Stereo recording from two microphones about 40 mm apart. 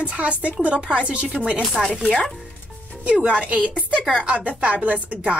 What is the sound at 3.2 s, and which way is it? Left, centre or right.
A woman's voice, right.